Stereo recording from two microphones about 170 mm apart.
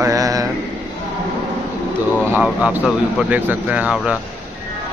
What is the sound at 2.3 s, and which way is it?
Speech, 10° right (ahead or behind).